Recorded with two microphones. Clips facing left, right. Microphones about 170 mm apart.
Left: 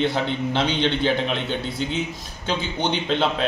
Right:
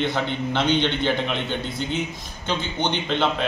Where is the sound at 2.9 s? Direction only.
Centre (ahead or behind).